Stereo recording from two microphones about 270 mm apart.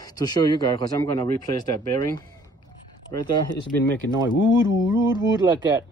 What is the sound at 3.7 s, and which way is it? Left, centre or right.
Speech, centre.